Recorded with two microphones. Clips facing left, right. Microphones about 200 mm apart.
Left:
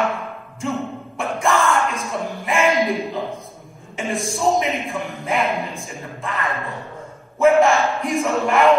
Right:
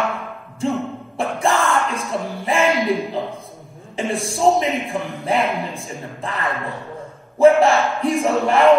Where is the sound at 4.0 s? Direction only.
30° right (ahead or behind).